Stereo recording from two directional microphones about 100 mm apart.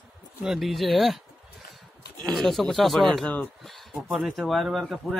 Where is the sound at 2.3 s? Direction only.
Centre (ahead or behind).